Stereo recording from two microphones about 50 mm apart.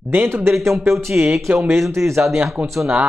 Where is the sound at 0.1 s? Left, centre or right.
Right.